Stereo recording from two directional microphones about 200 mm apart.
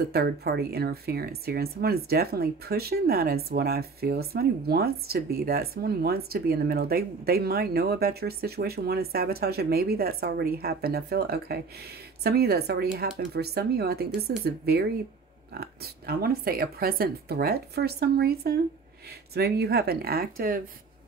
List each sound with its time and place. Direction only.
0.1 s speech: 50° right (ahead or behind)